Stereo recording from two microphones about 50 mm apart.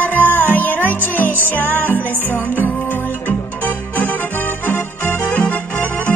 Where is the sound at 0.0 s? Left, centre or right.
Left.